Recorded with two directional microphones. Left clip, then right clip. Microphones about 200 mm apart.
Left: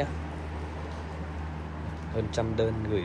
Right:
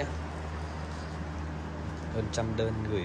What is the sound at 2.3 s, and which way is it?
Speech, 10° right (ahead or behind).